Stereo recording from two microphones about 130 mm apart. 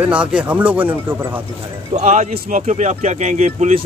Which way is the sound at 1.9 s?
60° right (ahead or behind).